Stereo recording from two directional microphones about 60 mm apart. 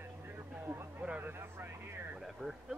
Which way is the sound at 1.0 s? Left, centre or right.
Right.